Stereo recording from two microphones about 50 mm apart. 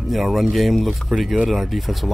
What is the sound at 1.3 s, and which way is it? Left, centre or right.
Speech, right.